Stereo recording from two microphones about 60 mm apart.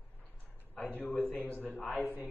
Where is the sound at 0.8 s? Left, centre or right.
Left.